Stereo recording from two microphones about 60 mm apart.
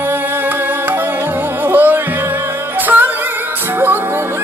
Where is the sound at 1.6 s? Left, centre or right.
Right.